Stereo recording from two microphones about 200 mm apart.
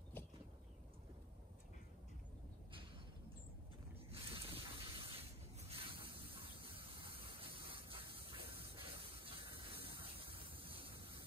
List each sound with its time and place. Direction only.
4.1 s spray: 30° right (ahead or behind)